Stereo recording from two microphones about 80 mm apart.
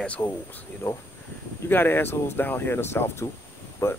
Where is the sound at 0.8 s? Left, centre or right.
Left.